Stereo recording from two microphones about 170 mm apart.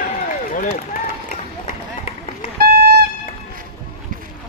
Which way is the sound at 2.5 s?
60° right (ahead or behind).